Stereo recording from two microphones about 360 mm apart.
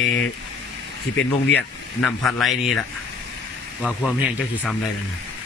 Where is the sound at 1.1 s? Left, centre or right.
Left.